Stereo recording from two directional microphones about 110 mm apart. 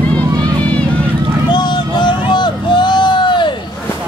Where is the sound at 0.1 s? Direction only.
10° left (ahead or behind).